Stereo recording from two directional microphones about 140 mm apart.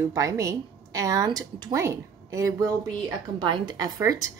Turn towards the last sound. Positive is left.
turn(degrees=-25)  # may be behind; listen again after turning